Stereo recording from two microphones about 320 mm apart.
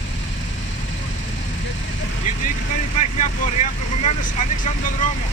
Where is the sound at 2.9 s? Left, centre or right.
Left.